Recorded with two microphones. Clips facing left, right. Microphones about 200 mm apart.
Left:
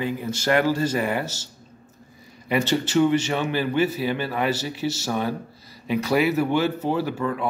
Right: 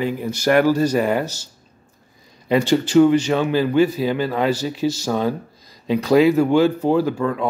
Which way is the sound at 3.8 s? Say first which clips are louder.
Right 5 dB; 15° right (ahead or behind).